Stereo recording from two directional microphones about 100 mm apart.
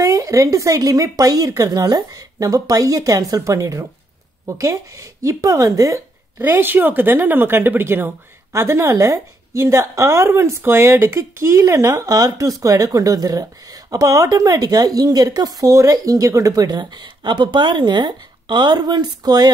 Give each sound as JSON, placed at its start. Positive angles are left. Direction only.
{"t": 0.0, "sound": "a woman's voice", "side_deg": -35}
{"t": 6.3, "sound": "a woman's voice", "side_deg": -20}